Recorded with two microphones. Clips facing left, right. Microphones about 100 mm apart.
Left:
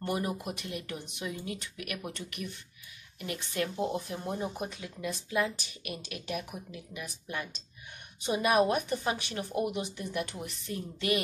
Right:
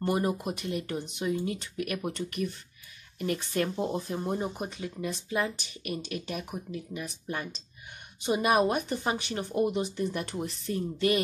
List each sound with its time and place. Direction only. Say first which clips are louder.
0.0 s speech: right 5 dB; 30° right (ahead or behind)